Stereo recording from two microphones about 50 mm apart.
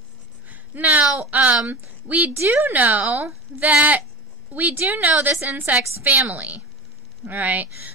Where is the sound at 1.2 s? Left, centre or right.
Right.